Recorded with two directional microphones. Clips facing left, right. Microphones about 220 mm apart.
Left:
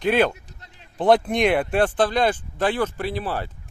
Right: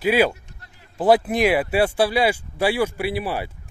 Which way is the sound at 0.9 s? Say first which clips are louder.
Right 1 dB; 5° right (ahead or behind).